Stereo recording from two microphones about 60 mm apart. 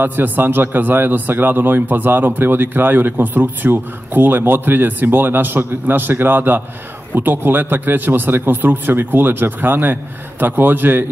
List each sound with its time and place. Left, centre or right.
0.0 s a man's voice: right